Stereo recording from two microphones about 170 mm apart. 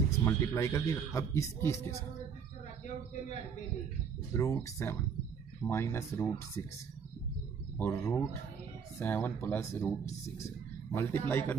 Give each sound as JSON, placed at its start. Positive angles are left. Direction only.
{"t": 0.2, "sound": "speech", "side_deg": 15}
{"t": 4.3, "sound": "speech", "side_deg": 15}
{"t": 7.7, "sound": "speech", "side_deg": 15}